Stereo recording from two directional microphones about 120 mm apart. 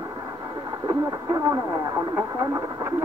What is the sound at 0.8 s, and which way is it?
Speech, 25° right (ahead or behind).